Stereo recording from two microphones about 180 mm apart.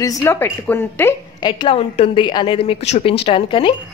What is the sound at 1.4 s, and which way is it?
A woman's voice, 25° left (ahead or behind).